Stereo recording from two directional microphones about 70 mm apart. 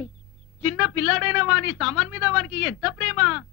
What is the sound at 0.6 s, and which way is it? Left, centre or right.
A man's voice, centre.